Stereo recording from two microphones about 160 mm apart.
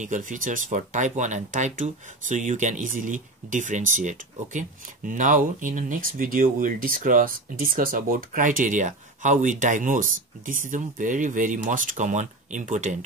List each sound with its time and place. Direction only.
0.0 s speech: 50° right (ahead or behind)